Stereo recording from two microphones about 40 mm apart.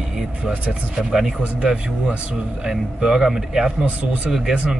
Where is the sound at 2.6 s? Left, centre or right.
Centre.